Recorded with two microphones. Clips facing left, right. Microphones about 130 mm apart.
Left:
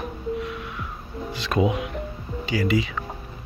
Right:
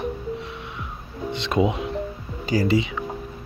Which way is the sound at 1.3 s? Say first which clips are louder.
Right 1 dB; 25° right (ahead or behind).